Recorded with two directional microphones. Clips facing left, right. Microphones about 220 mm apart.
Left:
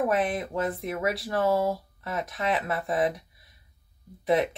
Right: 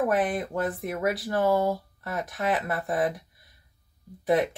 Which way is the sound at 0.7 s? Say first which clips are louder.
Right 1 dB; centre (ahead or behind).